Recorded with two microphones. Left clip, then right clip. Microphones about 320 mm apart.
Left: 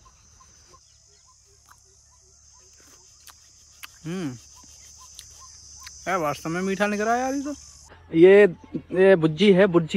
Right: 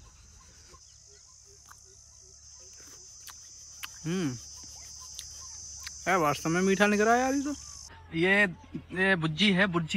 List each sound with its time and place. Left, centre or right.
2.8 s cricket: centre
5.2 s a sound: centre
5.8 s a man's voice: centre